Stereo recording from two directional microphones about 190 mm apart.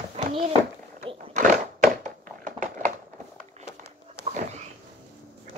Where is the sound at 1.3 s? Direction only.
40° right (ahead or behind).